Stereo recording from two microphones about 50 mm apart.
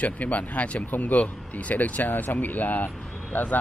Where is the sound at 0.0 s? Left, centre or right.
Left.